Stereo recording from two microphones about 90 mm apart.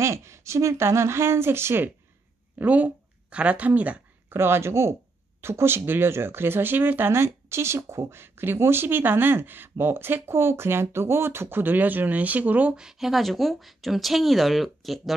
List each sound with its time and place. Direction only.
0.0 s speech: 30° right (ahead or behind); by 4.0 s 15° right (ahead or behind)
4.3 s speech: 25° right (ahead or behind); by 15.1 s centre (ahead or behind)